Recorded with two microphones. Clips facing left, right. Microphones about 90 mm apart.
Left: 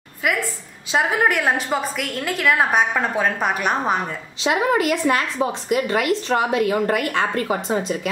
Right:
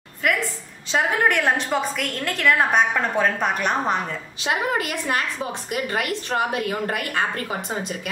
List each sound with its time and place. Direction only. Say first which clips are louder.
0.9 s a woman's voice: left 1 dB; 5° left (ahead or behind)
4.4 s a woman's voice: left 5 dB; 20° left (ahead or behind)